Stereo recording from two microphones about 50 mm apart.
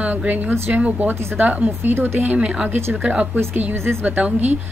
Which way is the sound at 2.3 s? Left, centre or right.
Right.